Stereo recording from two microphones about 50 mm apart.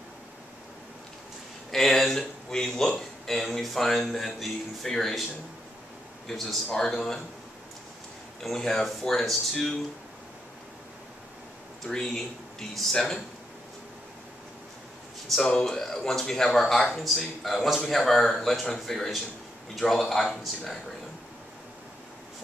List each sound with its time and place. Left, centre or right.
1.7 s a man's voice: centre
6.2 s a man's voice: centre
8.4 s speech: centre
11.8 s speech: centre
15.2 s a man's voice: centre